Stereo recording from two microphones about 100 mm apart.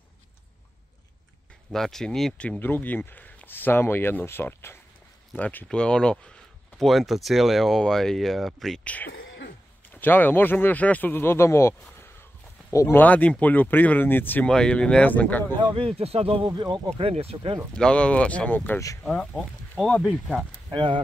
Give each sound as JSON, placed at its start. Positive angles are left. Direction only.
{"t": 1.7, "sound": "speech", "side_deg": 5}
{"t": 2.6, "sound": "speech", "side_deg": 20}
{"t": 8.8, "sound": "speech", "side_deg": 15}
{"t": 13.0, "sound": "speech", "side_deg": 15}
{"t": 14.5, "sound": "speech", "side_deg": 10}
{"t": 15.7, "sound": "speech", "side_deg": -70}
{"t": 16.4, "sound": "speech", "side_deg": -45}
{"t": 16.9, "sound": "speech", "side_deg": -85}
{"t": 17.7, "sound": "speech", "side_deg": 10}
{"t": 19.0, "sound": "speech", "side_deg": 5}
{"t": 20.7, "sound": "speech", "side_deg": -55}